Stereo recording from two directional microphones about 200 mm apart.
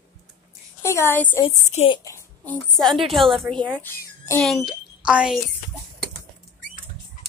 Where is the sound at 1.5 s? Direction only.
25° left (ahead or behind); by 5.4 s 5° right (ahead or behind).